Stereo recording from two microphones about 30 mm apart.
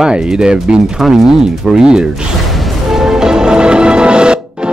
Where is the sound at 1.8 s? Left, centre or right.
Right.